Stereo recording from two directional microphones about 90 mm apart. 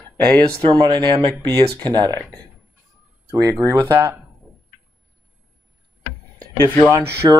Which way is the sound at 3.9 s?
25° right (ahead or behind).